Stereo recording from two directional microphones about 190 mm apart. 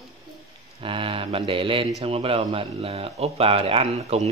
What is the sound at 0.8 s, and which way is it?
Speech, 30° right (ahead or behind).